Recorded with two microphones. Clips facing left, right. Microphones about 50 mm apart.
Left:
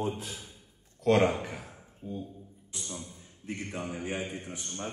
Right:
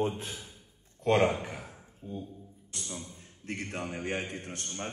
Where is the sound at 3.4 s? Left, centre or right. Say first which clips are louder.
Even; right.